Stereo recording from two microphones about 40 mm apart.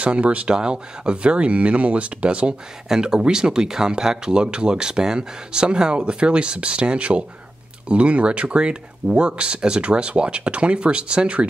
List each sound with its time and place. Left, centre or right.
0.0 s speech: right
0.6 s speech: right